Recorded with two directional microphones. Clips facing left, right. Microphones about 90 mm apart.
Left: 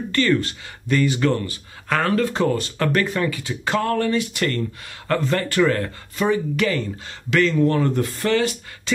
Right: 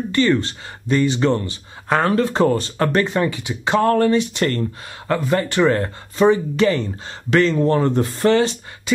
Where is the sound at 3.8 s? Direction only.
35° right (ahead or behind).